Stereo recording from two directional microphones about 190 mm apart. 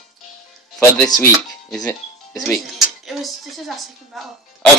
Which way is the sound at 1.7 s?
5° left (ahead or behind).